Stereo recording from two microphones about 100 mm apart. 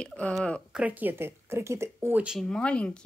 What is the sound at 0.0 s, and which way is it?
Speech, 10° left (ahead or behind).